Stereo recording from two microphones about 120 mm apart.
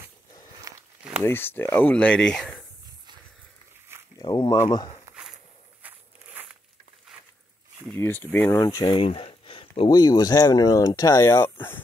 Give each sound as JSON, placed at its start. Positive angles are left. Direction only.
{"t": 0.7, "sound": "walk", "side_deg": -30}
{"t": 1.2, "sound": "speech", "side_deg": 20}
{"t": 4.2, "sound": "speech", "side_deg": 40}
{"t": 5.1, "sound": "a sound", "side_deg": -30}
{"t": 5.8, "sound": "walk", "side_deg": -15}
{"t": 7.9, "sound": "speech", "side_deg": 15}
{"t": 8.9, "sound": "speech", "side_deg": 50}